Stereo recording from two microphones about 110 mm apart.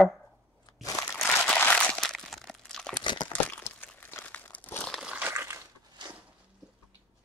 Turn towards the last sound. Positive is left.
turn(degrees=-40)  # may be behind; listen again after turning